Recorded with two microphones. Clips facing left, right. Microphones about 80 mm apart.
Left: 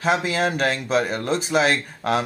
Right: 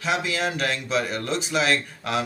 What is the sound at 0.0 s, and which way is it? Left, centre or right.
Speech, left.